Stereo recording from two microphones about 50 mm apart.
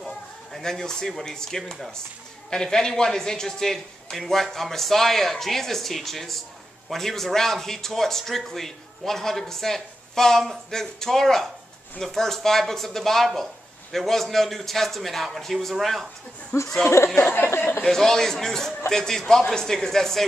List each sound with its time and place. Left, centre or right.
0.0 s speech: centre
16.5 s speech: left
17.8 s speech: centre